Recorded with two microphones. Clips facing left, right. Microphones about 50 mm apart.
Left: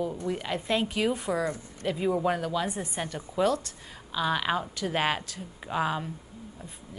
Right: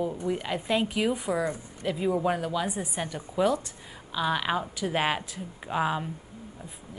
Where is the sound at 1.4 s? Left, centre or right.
Centre.